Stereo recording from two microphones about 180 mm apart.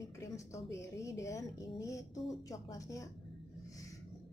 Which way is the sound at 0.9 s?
15° left (ahead or behind).